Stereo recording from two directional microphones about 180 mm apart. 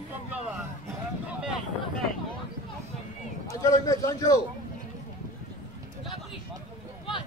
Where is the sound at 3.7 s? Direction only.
20° left (ahead or behind).